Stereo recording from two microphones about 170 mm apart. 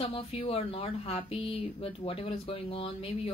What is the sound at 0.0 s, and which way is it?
Speech, 35° left (ahead or behind).